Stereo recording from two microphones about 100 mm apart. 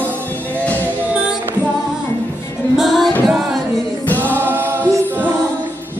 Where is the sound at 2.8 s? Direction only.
Centre (ahead or behind).